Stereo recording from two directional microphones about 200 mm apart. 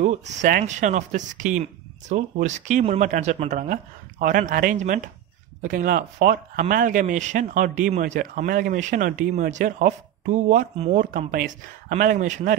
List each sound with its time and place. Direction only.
0.0 s speech: 35° right (ahead or behind)